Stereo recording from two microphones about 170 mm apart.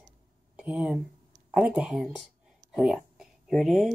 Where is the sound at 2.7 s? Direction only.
Centre (ahead or behind).